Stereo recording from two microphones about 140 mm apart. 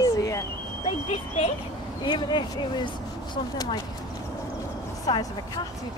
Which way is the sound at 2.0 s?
30° left (ahead or behind).